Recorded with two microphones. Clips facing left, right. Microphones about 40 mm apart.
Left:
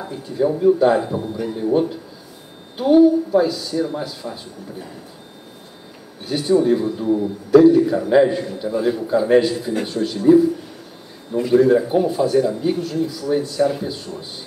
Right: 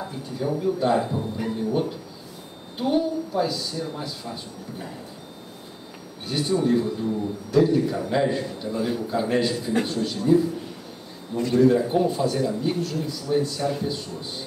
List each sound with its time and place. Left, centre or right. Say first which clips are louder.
0.0 s speech: left 8 dB; centre
0.7 s a woman's voice: left 6 dB; centre
1.5 s a woman's voice: left 7 dB; centre
6.2 s a woman's voice: left 6 dB; centre; by 7.6 s left
7.6 s a woman's voice: left 8 dB; centre